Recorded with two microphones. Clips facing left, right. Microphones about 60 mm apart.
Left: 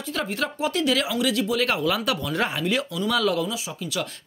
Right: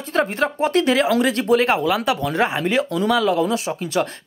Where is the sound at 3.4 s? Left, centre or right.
Right.